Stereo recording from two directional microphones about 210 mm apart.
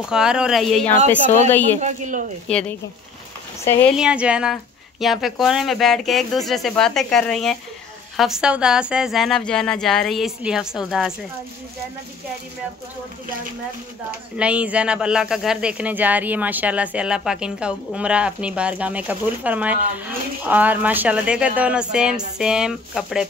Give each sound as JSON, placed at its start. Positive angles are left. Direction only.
{"t": 0.0, "sound": "a woman's voice", "side_deg": -5}
{"t": 1.8, "sound": "speech", "side_deg": -35}
{"t": 3.9, "sound": "speech", "side_deg": -5}
{"t": 14.3, "sound": "speech", "side_deg": -5}